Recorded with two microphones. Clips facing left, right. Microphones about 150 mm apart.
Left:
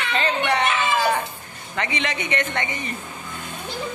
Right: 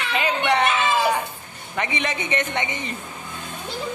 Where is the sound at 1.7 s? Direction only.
20° right (ahead or behind).